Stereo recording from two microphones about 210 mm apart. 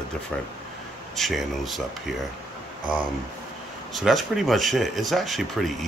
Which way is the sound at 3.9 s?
Centre (ahead or behind).